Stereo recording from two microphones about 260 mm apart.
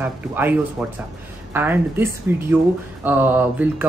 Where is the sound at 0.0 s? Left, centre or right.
Centre.